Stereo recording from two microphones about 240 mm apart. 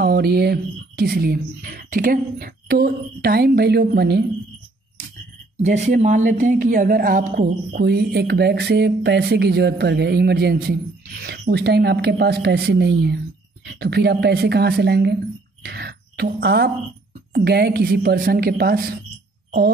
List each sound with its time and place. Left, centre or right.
0.0 s a woman's voice: right
5.6 s a woman's voice: right